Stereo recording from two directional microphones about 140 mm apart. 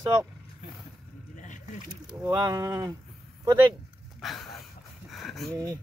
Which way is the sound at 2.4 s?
25° right (ahead or behind).